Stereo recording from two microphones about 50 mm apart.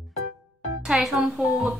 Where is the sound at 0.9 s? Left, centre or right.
Centre.